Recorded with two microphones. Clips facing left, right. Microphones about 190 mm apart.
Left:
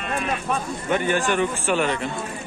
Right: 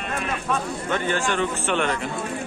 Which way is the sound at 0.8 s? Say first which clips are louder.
Left 4 dB; 15° left (ahead or behind).